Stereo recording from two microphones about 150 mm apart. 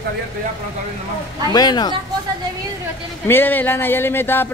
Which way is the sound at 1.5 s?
25° left (ahead or behind).